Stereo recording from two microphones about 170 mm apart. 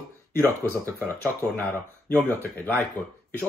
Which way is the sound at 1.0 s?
10° left (ahead or behind).